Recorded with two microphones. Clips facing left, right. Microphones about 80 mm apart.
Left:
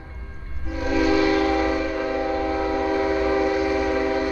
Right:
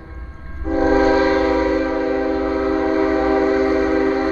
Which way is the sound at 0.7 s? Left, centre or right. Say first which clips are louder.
Right 6 dB; right.